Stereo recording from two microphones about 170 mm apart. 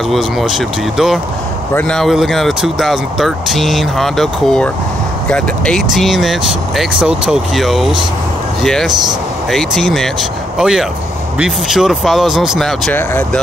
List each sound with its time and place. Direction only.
0.1 s speech: centre (ahead or behind)
12.9 s speech: 10° left (ahead or behind)